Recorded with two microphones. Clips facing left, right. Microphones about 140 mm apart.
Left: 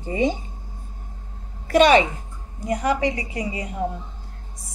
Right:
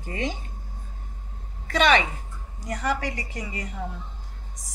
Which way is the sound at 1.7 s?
10° left (ahead or behind).